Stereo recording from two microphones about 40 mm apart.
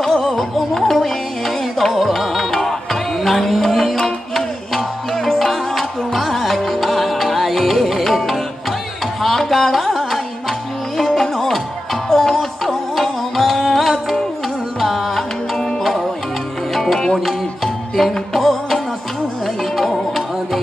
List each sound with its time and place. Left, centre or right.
0.0 s music: centre
3.9 s music: centre
15.5 s music: centre
15.8 s music: centre
18.1 s music: centre